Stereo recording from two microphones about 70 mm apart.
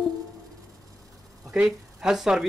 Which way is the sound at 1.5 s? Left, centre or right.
Centre.